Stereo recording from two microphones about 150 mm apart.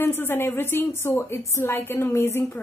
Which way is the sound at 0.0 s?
15° left (ahead or behind).